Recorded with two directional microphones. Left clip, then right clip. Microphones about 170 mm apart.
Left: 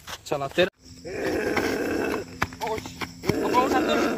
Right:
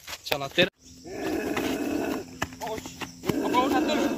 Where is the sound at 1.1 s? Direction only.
55° right (ahead or behind).